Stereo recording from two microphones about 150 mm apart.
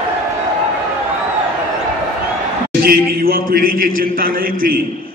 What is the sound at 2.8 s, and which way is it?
A man's voice, 80° right.